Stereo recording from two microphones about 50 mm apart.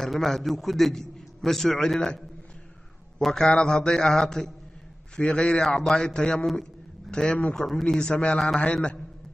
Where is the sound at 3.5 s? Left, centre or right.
Centre.